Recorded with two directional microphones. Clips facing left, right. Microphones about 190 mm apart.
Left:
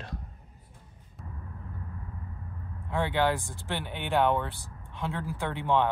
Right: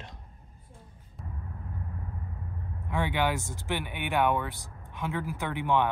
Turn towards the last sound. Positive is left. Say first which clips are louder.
# even
turn(degrees=-15)  # may be behind; listen again after turning